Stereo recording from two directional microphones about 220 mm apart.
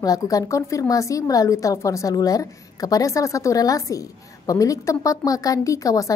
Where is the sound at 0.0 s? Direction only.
15° left (ahead or behind).